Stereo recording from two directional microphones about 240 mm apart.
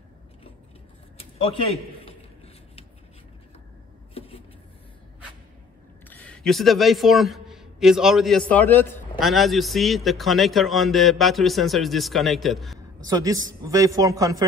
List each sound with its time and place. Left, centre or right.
6.0 s a man's voice: centre
13.0 s a man's voice: centre